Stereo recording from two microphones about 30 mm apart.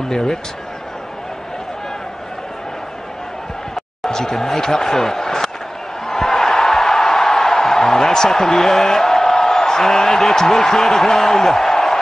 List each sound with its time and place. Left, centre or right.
0.1 s speech: centre
4.1 s speech: centre
6.0 s music: centre
10.3 s speech: centre